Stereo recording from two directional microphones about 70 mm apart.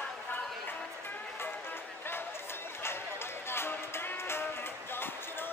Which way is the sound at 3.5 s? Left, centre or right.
Left.